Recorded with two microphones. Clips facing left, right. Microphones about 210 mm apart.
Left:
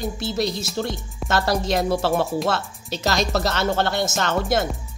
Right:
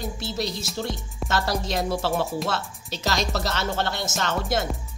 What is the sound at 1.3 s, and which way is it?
Speech, 60° left (ahead or behind).